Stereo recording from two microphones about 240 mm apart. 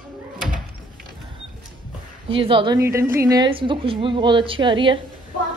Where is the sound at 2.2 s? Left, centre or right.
Right.